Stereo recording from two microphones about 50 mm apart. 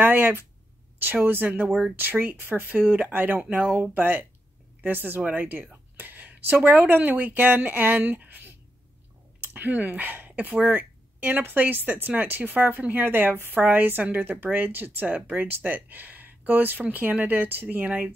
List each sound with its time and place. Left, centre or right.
0.0 s speech: right
9.5 s speech: right